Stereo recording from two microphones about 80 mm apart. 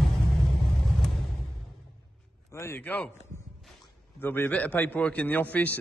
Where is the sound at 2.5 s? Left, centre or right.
Left.